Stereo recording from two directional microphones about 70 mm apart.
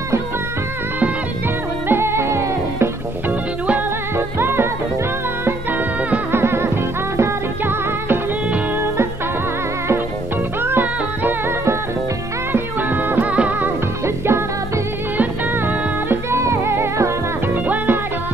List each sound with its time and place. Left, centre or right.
1.9 s music: right
3.3 s music: right
4.4 s music: right
5.4 s music: right
6.3 s music: right
10.6 s music: right
12.5 s music: right
14.0 s music: right